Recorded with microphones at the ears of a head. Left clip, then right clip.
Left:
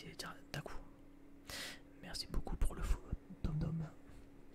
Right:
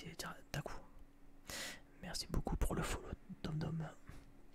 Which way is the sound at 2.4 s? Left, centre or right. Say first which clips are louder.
Right 7 dB; right.